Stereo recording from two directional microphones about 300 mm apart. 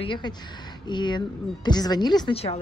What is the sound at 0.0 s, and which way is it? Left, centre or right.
A woman's voice, centre.